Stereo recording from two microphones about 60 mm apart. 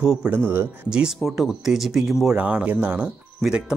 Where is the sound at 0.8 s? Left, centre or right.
Centre.